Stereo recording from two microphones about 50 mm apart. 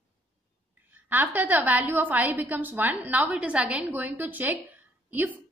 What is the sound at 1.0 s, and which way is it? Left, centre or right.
A woman's voice, right.